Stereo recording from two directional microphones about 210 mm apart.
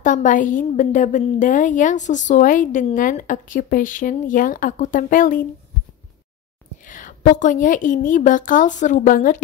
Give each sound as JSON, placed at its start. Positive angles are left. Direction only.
{"t": 0.0, "sound": "a woman's voice", "side_deg": 35}
{"t": 6.9, "sound": "a woman's voice", "side_deg": 40}